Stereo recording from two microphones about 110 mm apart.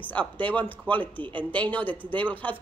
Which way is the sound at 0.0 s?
15° left (ahead or behind).